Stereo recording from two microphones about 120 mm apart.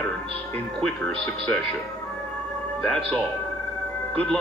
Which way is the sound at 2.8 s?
5° left (ahead or behind).